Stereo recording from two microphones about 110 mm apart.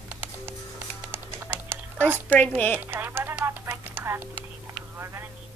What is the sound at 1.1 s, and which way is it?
Music, 20° right (ahead or behind).